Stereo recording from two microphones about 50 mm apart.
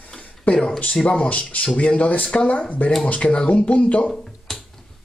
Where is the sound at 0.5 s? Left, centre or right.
Left.